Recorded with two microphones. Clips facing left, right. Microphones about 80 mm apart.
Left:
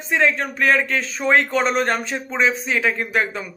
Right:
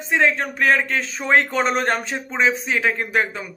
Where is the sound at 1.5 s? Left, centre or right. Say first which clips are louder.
Left 1 dB; right.